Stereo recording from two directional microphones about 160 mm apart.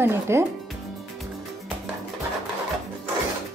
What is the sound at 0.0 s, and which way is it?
Speech, 15° right (ahead or behind).